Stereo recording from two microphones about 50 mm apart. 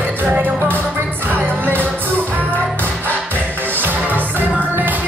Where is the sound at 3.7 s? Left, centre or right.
Right.